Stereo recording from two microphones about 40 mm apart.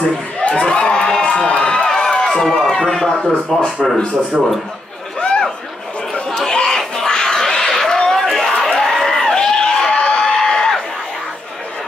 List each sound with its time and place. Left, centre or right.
0.6 s crowd: left
4.3 s a man's voice: centre
6.3 s chatter: centre
7.1 s a sound: centre
8.3 s crowd: centre
8.7 s a sound: centre